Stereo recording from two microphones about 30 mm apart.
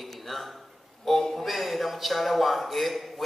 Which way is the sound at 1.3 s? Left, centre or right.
Centre.